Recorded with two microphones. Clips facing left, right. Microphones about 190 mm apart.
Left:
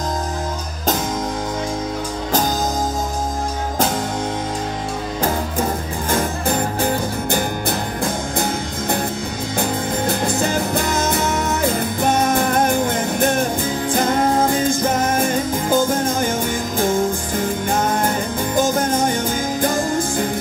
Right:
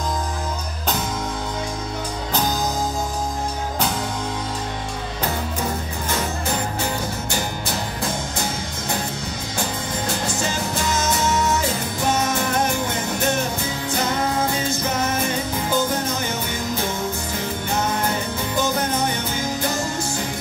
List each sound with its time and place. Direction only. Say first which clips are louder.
5.2 s music: left 4 dB; 50° left (ahead or behind)